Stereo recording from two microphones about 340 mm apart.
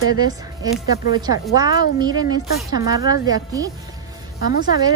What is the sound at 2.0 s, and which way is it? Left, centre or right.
Speech, centre.